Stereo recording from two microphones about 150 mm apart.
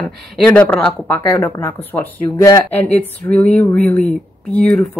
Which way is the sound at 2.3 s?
25° left (ahead or behind).